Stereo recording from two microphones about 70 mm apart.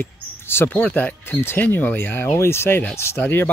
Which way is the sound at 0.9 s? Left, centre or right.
Left.